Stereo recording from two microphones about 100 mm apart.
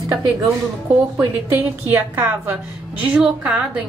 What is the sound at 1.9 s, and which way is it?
A woman's voice, 20° right (ahead or behind).